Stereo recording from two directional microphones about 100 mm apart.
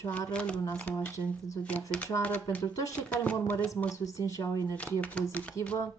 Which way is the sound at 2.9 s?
15° left (ahead or behind).